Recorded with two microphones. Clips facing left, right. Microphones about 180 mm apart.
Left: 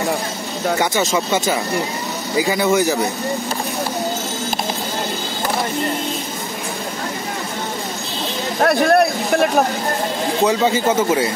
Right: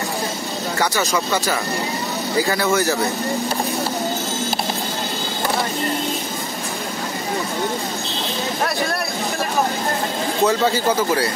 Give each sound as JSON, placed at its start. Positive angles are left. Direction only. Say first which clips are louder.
{"t": 1.1, "sound": "a man's voice", "louder": "left 2 dB", "side_deg": 20}
{"t": 8.5, "sound": "a man's voice", "louder": "left 12 dB", "side_deg": 55}
{"t": 10.4, "sound": "a man's voice", "louder": "left 1 dB", "side_deg": 20}